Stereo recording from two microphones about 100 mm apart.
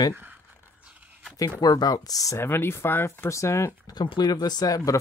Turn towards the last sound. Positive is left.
turn(degrees=35)  # may be behind; listen again after turning